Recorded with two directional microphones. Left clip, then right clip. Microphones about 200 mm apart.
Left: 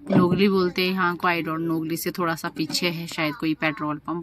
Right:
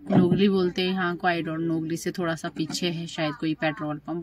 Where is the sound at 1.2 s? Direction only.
Centre (ahead or behind).